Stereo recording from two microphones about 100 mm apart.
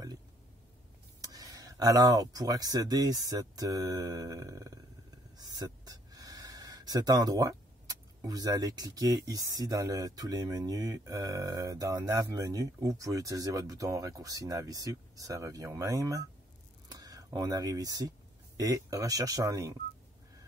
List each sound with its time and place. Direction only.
1.2 s speech: 35° right (ahead or behind)